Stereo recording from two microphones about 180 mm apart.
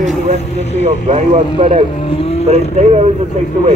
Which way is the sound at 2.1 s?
30° left (ahead or behind).